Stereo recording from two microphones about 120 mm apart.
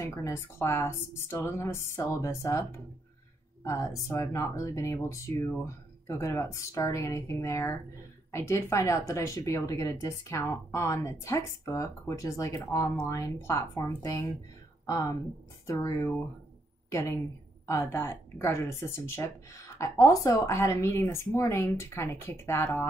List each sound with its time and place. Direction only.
0.0 s speech: 25° left (ahead or behind)
3.6 s speech: 25° left (ahead or behind)